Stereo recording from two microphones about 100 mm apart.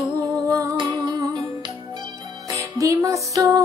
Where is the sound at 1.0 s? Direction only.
45° right (ahead or behind).